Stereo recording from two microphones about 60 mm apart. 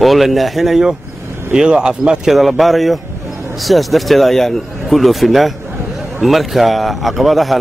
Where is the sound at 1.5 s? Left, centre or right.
Centre.